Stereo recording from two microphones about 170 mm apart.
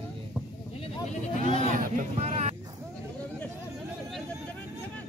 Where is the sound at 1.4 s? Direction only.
50° right (ahead or behind).